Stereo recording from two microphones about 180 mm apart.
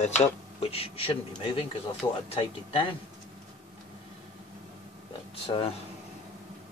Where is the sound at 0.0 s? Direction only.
35° left (ahead or behind).